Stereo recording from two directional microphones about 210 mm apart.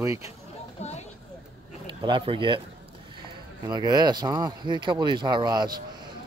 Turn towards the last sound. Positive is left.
turn(degrees=-20)  # may be behind; listen again after turning